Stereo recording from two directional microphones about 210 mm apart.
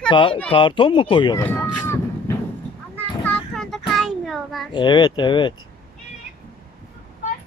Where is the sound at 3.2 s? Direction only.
5° left (ahead or behind).